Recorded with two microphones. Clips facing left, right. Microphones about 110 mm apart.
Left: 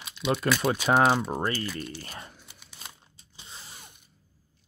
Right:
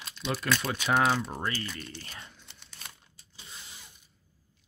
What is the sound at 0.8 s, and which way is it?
Speech, 35° left (ahead or behind).